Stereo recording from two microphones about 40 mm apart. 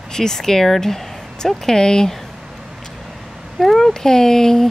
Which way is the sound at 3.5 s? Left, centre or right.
Centre.